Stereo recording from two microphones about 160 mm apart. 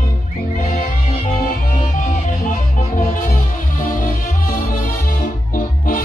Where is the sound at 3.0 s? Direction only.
65° left (ahead or behind).